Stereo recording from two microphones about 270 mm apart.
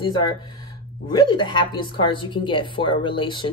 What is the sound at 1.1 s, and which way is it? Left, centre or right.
A woman's voice, centre.